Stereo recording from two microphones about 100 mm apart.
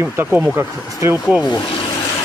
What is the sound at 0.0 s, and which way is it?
Speech, 20° right (ahead or behind).